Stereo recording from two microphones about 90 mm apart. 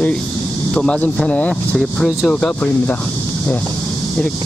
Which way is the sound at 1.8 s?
Centre (ahead or behind).